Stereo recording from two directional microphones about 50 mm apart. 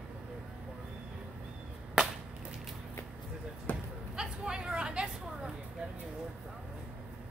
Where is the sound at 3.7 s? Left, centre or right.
Left.